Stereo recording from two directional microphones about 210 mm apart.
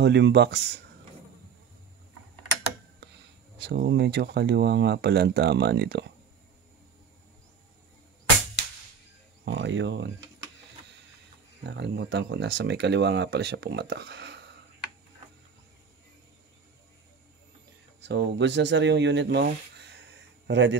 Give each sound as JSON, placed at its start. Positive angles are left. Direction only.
{"t": 0.0, "sound": "speech", "side_deg": -55}
{"t": 3.5, "sound": "speech", "side_deg": -50}
{"t": 9.4, "sound": "speech", "side_deg": -60}
{"t": 11.6, "sound": "speech", "side_deg": -55}
{"t": 18.0, "sound": "speech", "side_deg": -55}